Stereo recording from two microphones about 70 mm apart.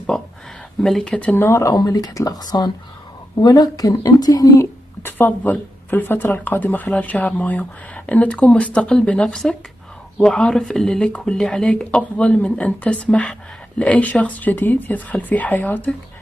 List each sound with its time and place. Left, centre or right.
0.8 s speech: centre
1.3 s speech: left
1.8 s speech: left
5.0 s speech: left